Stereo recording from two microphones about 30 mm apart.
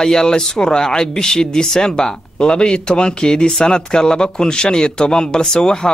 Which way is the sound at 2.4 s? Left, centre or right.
Left.